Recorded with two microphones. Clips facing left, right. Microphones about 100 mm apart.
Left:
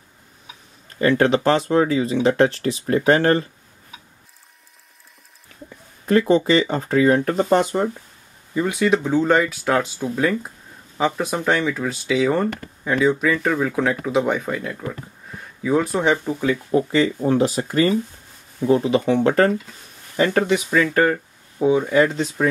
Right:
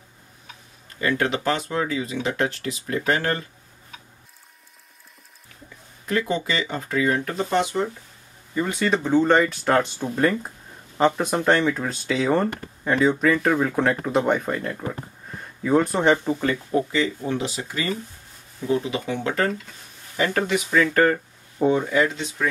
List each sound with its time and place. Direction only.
1.0 s speech: 35° left (ahead or behind)
6.0 s speech: 35° left (ahead or behind)
8.5 s speech: 10° left (ahead or behind)
16.9 s speech: 45° left (ahead or behind)
20.2 s speech: 20° left (ahead or behind)
22.0 s speech: 40° left (ahead or behind)